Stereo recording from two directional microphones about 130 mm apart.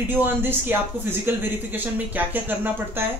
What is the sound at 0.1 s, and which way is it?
Speech, 15° right (ahead or behind).